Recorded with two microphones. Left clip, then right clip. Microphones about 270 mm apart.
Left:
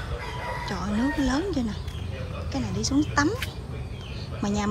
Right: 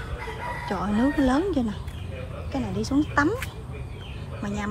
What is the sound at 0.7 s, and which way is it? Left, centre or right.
Speech, centre.